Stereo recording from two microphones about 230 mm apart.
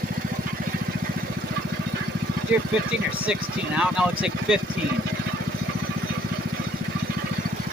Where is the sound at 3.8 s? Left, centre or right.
Centre.